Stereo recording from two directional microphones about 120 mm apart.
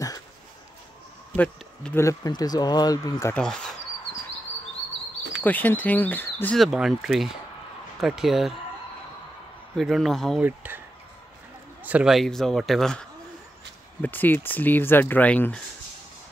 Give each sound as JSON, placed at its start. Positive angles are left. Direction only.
{"t": 1.3, "sound": "speech", "side_deg": 10}
{"t": 2.0, "sound": "speech", "side_deg": 30}
{"t": 3.3, "sound": "speech", "side_deg": 5}
{"t": 5.4, "sound": "speech", "side_deg": 15}
{"t": 6.5, "sound": "speech", "side_deg": 0}
{"t": 9.8, "sound": "speech", "side_deg": 0}
{"t": 10.4, "sound": "speech", "side_deg": -15}
{"t": 11.8, "sound": "speech", "side_deg": -10}
{"t": 14.0, "sound": "speech", "side_deg": 15}